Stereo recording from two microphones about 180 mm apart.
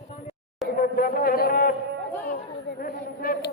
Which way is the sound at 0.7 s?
55° left (ahead or behind).